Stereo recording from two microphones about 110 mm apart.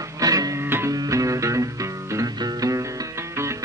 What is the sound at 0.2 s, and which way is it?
Music, 35° right (ahead or behind).